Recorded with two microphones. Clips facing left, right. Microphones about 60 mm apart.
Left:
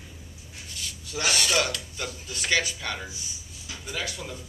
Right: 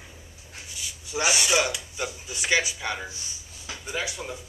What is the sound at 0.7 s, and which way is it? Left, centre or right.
Speech, centre.